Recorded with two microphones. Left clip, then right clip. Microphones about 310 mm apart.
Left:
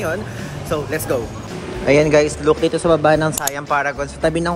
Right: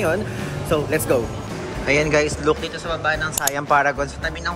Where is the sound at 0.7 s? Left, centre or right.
Centre.